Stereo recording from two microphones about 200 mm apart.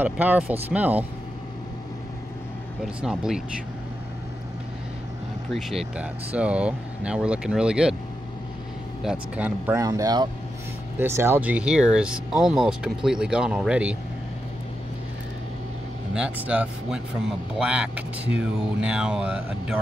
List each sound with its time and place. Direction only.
0.0 s speech: 10° right (ahead or behind)
2.8 s a man's voice: 5° right (ahead or behind)
5.5 s a man's voice: centre (ahead or behind)
9.0 s a man's voice: 5° right (ahead or behind)
16.2 s a man's voice: 5° right (ahead or behind)